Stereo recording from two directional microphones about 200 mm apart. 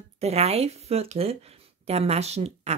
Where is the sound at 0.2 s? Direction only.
30° right (ahead or behind).